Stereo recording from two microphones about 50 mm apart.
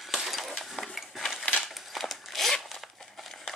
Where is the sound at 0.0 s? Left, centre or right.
Centre.